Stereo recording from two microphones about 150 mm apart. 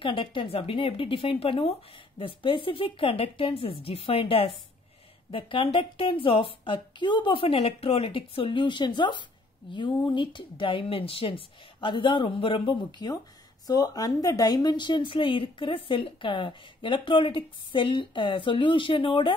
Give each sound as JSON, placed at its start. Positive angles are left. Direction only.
{"t": 0.0, "sound": "a woman's voice", "side_deg": 35}
{"t": 13.7, "sound": "a woman's voice", "side_deg": 25}